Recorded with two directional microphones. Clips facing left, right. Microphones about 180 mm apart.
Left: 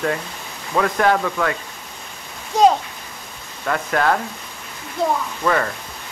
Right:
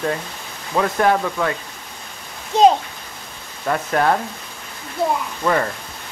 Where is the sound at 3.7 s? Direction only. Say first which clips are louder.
Right 1 dB; 20° right (ahead or behind).